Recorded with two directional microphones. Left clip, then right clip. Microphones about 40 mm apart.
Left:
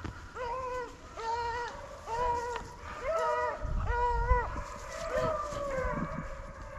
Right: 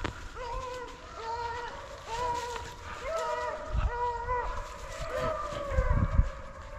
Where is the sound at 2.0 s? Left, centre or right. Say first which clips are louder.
Left 1 dB; left.